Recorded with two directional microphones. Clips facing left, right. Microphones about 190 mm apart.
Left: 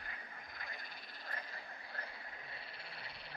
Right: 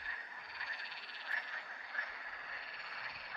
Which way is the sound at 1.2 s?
40° left (ahead or behind).